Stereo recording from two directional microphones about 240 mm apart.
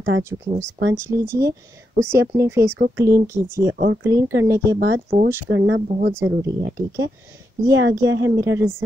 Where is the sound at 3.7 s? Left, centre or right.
Right.